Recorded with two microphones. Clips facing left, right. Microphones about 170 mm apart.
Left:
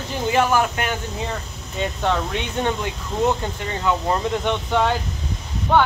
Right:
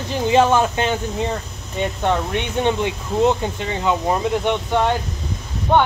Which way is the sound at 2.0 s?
15° right (ahead or behind).